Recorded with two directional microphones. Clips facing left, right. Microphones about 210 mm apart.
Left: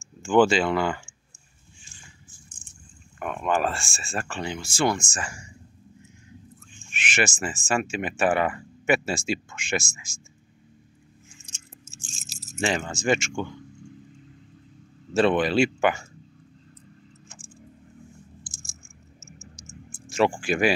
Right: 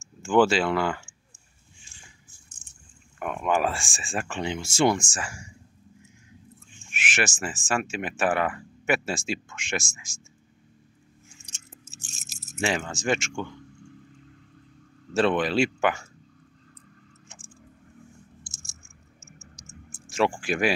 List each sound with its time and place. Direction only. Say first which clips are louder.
0.2 s speech: left 1 dB; 5° right (ahead or behind)
3.2 s speech: even; 5° right (ahead or behind)
6.9 s speech: left 2 dB; 5° right (ahead or behind)
11.4 s keys jangling: left 1 dB; 65° right (ahead or behind)
12.5 s speech: left 1 dB; centre (ahead or behind)
15.1 s speech: left 2 dB; centre (ahead or behind)
20.3 s speech: left 2 dB; centre (ahead or behind)